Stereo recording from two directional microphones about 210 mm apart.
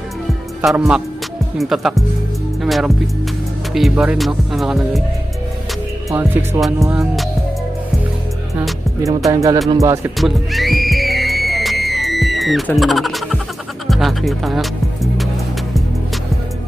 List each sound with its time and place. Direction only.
0.6 s music: 5° right (ahead or behind)
1.6 s speech: centre (ahead or behind)
6.0 s speech: 10° right (ahead or behind)
9.3 s speech: 15° right (ahead or behind)
10.1 s music: centre (ahead or behind)
13.8 s speech: centre (ahead or behind)